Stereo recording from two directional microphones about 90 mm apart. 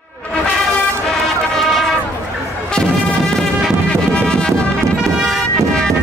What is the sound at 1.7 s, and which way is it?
Brass instrument, 5° left (ahead or behind).